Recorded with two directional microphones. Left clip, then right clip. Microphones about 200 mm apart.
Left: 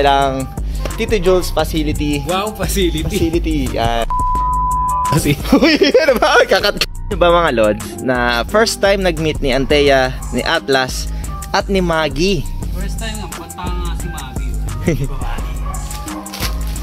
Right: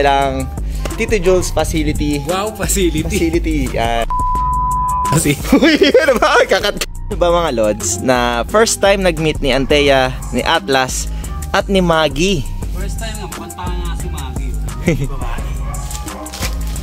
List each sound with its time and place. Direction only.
0.0 s speech: 5° left (ahead or behind)
2.3 s speech: 20° right (ahead or behind)
3.3 s music: centre (ahead or behind)
5.1 s speech: 20° right (ahead or behind)
5.4 s speech: centre (ahead or behind)
5.9 s speech: 10° right (ahead or behind)
7.1 s speech: 10° right (ahead or behind)